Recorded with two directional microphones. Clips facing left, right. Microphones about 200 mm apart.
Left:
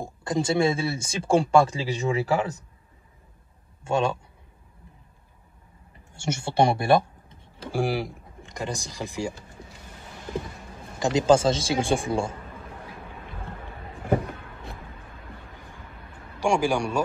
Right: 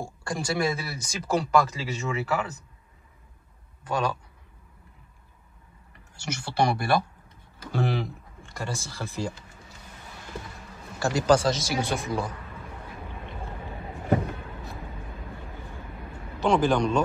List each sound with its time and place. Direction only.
0.0 s speech: 20° left (ahead or behind)
3.8 s speech: 25° left (ahead or behind)
6.1 s speech: 25° left (ahead or behind)
7.7 s speech: 10° left (ahead or behind)
11.0 s speech: 20° left (ahead or behind)
16.3 s a man's voice: 10° left (ahead or behind)